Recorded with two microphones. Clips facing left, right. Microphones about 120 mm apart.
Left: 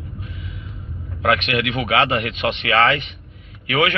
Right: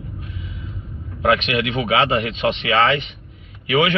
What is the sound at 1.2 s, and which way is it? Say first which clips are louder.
Speech: right 1 dB; 25° right (ahead or behind).